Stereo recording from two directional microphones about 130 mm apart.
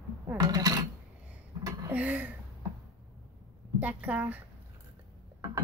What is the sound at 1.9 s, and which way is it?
Speech, 10° right (ahead or behind).